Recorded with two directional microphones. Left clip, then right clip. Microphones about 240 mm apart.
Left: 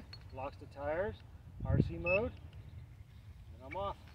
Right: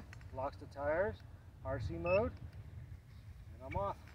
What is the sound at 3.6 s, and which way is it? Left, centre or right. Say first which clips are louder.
Speech: even; centre.